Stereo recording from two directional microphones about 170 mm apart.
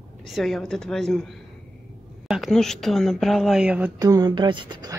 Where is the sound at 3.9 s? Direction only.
20° right (ahead or behind).